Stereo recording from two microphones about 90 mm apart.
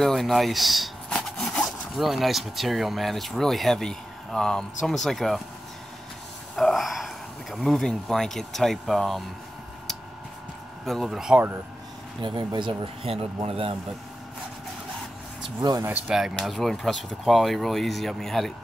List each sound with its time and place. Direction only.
0.0 s speech: 5° left (ahead or behind)
6.5 s a sound: centre (ahead or behind)
7.5 s speech: 5° left (ahead or behind)
10.9 s speech: centre (ahead or behind)
12.2 s speech: 65° right (ahead or behind)
12.5 s speech: 75° right (ahead or behind)
16.1 s speech: 5° right (ahead or behind)